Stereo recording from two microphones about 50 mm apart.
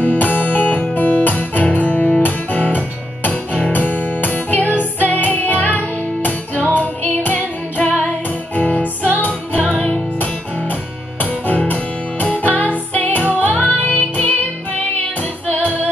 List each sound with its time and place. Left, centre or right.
0.0 s guitar: left
3.3 s music: left
11.4 s music: left
15.4 s music: left